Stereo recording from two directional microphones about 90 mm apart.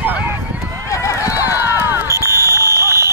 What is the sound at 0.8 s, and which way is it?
Run, 35° left (ahead or behind).